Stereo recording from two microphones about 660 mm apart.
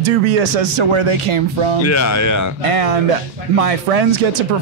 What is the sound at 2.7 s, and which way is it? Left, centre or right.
Speech, right.